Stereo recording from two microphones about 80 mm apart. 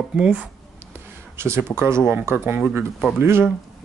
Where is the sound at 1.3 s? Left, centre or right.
Right.